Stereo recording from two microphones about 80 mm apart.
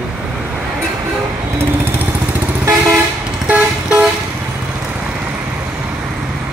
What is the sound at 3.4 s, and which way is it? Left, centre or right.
Vehicle, centre.